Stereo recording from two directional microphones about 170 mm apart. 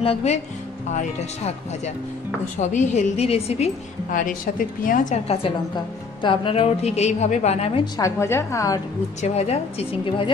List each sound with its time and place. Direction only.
0.0 s a woman's voice: 35° left (ahead or behind)
2.6 s a woman's voice: 45° left (ahead or behind)
4.3 s a woman's voice: 55° left (ahead or behind); by 7.9 s 35° left (ahead or behind)
8.0 s a woman's voice: 15° left (ahead or behind)
9.2 s a woman's voice: 40° left (ahead or behind)